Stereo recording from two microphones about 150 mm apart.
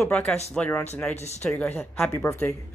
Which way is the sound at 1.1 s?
45° left (ahead or behind).